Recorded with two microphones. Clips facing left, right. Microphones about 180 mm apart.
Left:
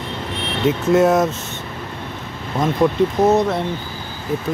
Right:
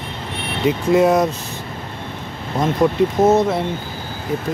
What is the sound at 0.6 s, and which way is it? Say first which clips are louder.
Speech: even; centre (ahead or behind).